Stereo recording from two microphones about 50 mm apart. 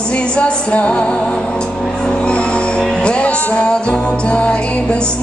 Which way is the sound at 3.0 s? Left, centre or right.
Left.